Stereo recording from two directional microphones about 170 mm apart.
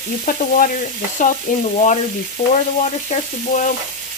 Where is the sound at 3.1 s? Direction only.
50° left (ahead or behind).